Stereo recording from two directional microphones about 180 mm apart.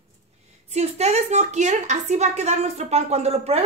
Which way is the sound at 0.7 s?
35° right (ahead or behind).